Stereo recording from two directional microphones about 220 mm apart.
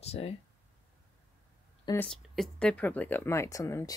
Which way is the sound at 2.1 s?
Centre (ahead or behind).